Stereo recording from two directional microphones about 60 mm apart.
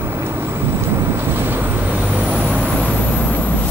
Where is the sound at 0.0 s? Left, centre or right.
Right.